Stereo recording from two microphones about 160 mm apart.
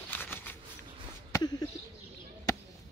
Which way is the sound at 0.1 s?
10° left (ahead or behind).